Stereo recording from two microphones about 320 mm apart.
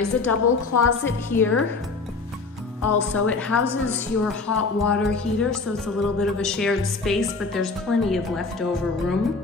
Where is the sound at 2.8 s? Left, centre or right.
Left.